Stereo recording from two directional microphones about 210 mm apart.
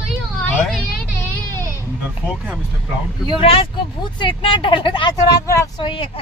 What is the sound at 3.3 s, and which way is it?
Speech, 25° left (ahead or behind).